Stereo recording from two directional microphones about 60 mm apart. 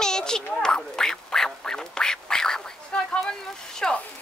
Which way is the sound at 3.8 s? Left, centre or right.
Centre.